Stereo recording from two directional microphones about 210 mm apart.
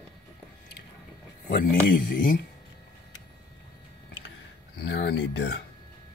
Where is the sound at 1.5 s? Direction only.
45° left (ahead or behind).